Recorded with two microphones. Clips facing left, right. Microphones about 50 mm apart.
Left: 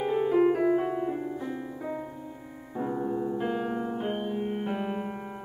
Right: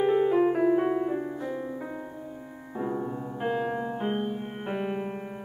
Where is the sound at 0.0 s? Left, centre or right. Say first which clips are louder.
Right 3 dB; right.